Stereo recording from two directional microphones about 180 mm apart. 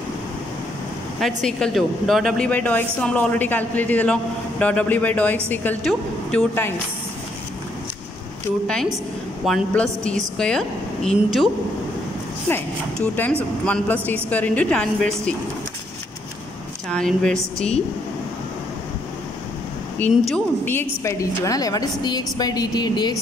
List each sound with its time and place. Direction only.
1.2 s speech: centre (ahead or behind)
8.6 s a woman's voice: 5° left (ahead or behind)
12.4 s speech: 10° left (ahead or behind)
16.9 s a woman's voice: 5° left (ahead or behind)
20.0 s a woman's voice: 5° left (ahead or behind); by 23.1 s 25° left (ahead or behind)